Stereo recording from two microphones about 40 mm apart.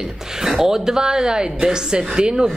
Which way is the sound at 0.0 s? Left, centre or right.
Centre.